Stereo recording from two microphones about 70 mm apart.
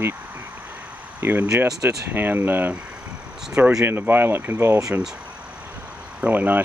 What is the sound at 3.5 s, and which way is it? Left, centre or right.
Speech, centre.